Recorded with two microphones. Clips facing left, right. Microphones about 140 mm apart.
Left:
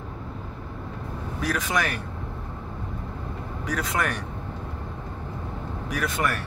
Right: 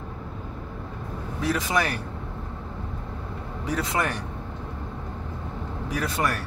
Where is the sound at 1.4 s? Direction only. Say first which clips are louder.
Right 2 dB; 30° right (ahead or behind).